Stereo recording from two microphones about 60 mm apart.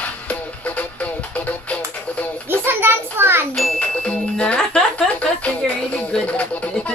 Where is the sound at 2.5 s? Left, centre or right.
Right.